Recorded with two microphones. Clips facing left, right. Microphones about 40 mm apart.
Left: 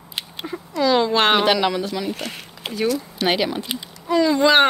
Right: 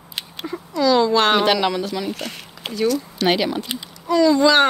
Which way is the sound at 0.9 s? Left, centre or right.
Left.